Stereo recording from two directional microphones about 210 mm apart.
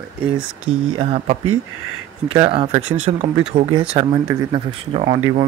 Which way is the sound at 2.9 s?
70° right (ahead or behind).